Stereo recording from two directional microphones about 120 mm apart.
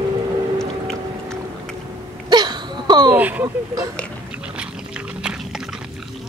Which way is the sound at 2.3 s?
35° right (ahead or behind).